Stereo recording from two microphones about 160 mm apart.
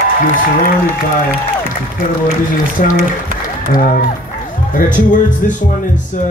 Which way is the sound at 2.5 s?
55° left (ahead or behind).